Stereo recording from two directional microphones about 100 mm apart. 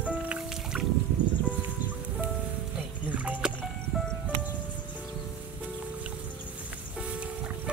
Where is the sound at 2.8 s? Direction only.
15° right (ahead or behind).